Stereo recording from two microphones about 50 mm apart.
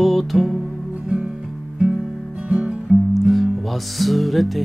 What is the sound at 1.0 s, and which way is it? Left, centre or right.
Music, right.